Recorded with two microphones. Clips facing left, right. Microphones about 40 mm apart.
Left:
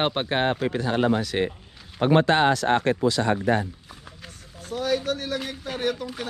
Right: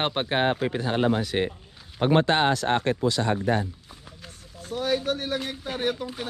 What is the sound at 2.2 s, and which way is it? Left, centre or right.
Speech, left.